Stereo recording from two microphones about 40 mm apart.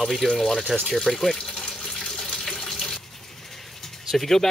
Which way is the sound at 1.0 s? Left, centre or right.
Centre.